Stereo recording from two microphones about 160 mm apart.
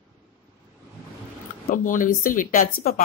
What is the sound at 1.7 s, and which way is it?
A woman's voice, 60° left (ahead or behind).